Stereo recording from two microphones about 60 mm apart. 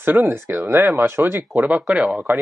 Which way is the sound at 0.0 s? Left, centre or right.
Right.